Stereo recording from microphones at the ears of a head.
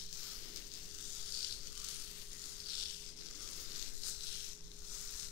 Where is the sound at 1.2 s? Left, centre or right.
Left.